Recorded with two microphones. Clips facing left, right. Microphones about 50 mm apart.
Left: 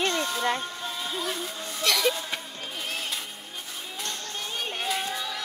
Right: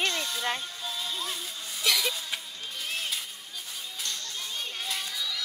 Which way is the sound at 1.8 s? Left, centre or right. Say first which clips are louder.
Left 2 dB; centre.